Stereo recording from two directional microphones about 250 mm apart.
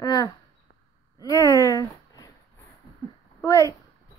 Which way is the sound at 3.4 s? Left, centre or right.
Centre.